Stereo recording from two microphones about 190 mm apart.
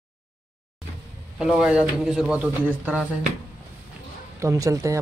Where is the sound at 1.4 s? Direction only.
Centre (ahead or behind).